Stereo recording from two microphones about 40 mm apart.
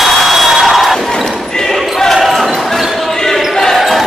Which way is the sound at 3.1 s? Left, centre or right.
Centre.